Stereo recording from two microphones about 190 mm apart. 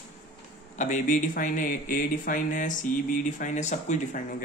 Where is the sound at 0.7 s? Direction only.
40° left (ahead or behind).